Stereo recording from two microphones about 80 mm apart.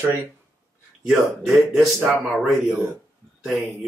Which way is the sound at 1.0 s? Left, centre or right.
Centre.